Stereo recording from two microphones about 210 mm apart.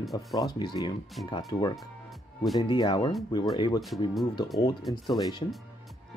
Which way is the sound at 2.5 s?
20° left (ahead or behind).